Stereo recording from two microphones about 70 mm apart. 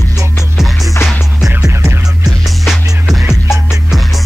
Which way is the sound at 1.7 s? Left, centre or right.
Right.